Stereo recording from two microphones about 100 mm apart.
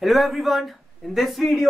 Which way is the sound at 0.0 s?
Centre (ahead or behind).